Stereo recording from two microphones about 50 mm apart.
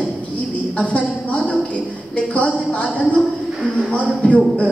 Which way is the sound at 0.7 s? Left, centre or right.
Left.